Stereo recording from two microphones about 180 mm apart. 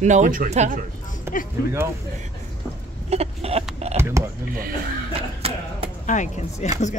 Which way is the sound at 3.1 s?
35° right (ahead or behind).